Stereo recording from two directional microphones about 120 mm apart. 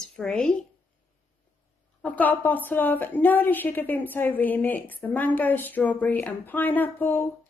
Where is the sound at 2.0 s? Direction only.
15° left (ahead or behind).